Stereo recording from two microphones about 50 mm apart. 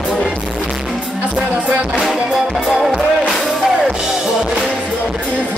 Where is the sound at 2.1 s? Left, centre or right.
Centre.